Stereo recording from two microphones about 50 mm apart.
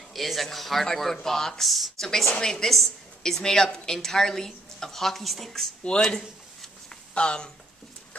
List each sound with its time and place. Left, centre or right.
0.1 s a woman's voice: centre
5.9 s a woman's voice: centre